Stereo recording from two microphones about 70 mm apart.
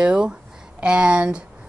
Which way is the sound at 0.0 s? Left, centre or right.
Centre.